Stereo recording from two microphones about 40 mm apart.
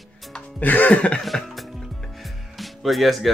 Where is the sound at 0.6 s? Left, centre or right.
Left.